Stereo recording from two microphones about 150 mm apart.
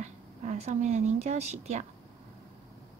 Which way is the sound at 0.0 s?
50° right (ahead or behind).